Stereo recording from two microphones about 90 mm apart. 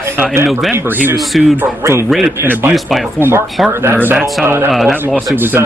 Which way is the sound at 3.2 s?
25° right (ahead or behind).